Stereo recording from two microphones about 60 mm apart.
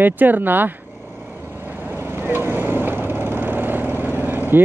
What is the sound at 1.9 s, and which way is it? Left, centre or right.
Vehicle, right.